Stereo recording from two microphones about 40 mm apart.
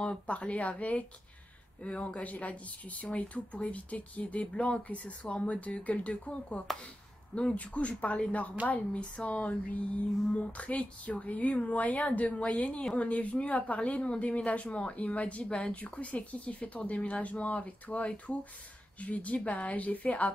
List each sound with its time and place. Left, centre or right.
0.0 s speech: left